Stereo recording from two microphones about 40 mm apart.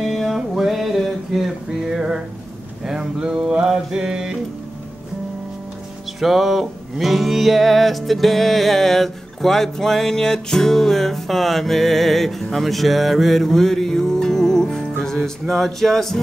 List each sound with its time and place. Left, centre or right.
0.0 s music: centre
2.8 s a sound: centre
6.1 s music: centre
15.2 s speech: centre